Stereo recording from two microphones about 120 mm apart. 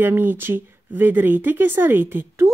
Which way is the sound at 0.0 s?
15° right (ahead or behind).